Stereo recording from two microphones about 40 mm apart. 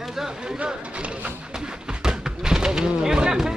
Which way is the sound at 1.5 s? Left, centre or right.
Centre.